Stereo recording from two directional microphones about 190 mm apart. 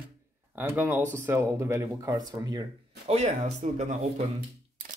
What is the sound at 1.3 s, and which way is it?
Speech, 15° right (ahead or behind).